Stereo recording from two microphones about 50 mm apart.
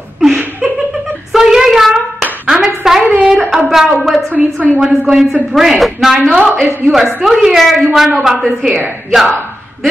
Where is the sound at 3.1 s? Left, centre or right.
Right.